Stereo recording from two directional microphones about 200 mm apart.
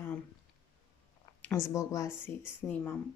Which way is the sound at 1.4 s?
15° left (ahead or behind).